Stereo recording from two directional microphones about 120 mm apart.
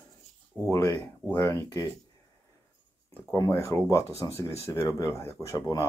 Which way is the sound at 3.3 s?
25° left (ahead or behind).